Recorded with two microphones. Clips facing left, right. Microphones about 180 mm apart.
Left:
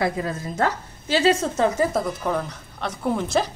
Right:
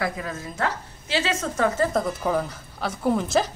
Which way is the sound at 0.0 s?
30° left (ahead or behind).